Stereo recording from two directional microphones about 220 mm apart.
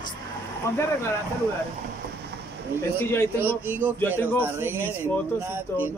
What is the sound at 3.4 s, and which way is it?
Speech, 10° right (ahead or behind).